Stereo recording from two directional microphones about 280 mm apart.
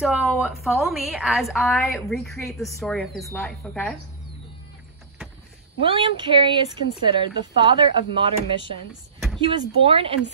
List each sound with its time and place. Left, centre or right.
0.0 s a woman's voice: centre
5.8 s speech: centre
9.8 s speech: centre